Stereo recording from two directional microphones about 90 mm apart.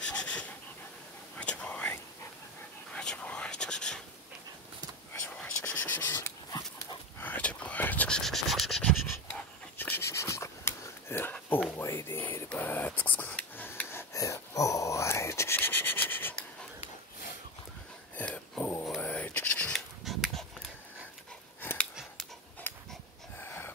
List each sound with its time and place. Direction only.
0.0 s a sound: 10° left (ahead or behind)
1.4 s whispering: 15° left (ahead or behind)
5.4 s whispering: 15° left (ahead or behind)
8.2 s scratch: 5° left (ahead or behind)
9.3 s writing: 20° left (ahead or behind)
11.4 s whispering: 25° left (ahead or behind)
18.1 s a sound: 15° left (ahead or behind)
19.7 s a sound: centre (ahead or behind)
21.5 s dog: 20° left (ahead or behind)
23.4 s wheeze: 25° left (ahead or behind)